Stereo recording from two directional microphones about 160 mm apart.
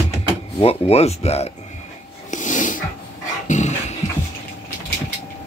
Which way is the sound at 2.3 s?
50° left (ahead or behind).